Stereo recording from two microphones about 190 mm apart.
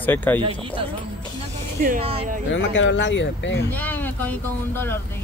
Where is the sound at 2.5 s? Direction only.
80° left.